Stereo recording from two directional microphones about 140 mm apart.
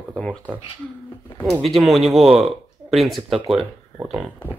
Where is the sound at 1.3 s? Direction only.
Centre (ahead or behind).